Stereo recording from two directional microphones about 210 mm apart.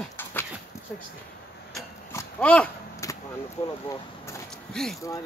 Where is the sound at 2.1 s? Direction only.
5° left (ahead or behind).